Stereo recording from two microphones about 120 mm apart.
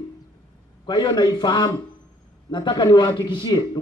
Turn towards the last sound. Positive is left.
turn(degrees=40)  # may be behind; listen again after turning